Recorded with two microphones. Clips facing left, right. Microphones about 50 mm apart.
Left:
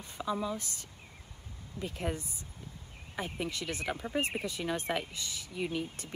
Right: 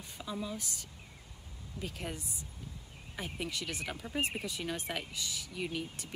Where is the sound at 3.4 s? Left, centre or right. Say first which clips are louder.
Left 3 dB; left.